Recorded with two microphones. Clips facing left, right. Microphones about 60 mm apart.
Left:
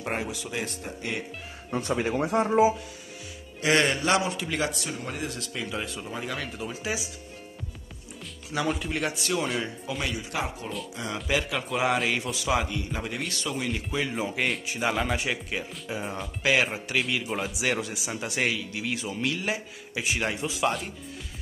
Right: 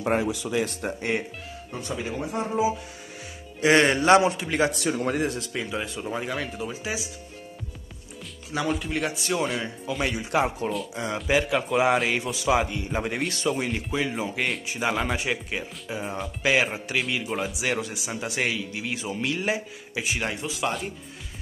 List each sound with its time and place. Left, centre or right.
0.8 s speech: right
1.7 s speech: left
3.6 s speech: centre
4.0 s a man's voice: right
4.7 s speech: right
5.6 s speech: centre
8.5 s speech: centre
10.0 s a man's voice: right
11.2 s speech: centre
12.7 s a man's voice: right
13.7 s speech: centre